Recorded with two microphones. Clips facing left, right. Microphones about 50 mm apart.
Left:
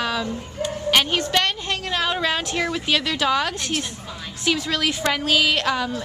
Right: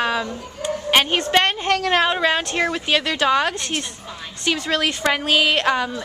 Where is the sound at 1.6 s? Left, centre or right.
Right.